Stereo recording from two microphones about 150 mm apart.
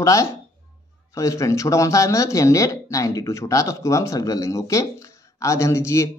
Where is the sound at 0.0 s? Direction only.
20° left (ahead or behind).